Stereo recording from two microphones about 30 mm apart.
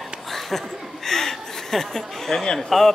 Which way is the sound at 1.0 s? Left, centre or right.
Centre.